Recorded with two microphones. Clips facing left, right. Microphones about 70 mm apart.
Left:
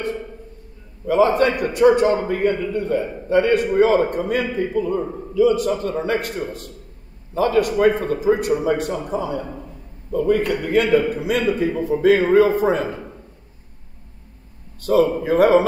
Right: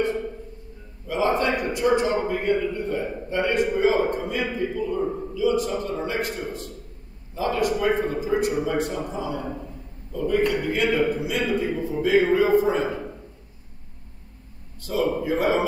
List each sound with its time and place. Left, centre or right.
1.0 s a man's voice: left
14.8 s a man's voice: left